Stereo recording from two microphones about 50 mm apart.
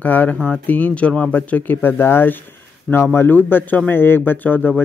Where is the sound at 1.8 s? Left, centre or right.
Left.